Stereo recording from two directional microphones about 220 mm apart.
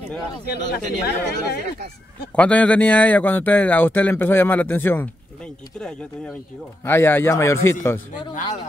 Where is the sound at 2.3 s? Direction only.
5° left (ahead or behind).